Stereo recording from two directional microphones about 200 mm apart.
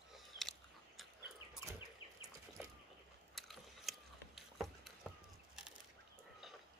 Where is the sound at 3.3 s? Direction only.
Centre (ahead or behind).